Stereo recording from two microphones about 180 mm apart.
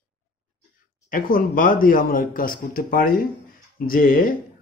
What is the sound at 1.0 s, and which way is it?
Speech, 50° left (ahead or behind).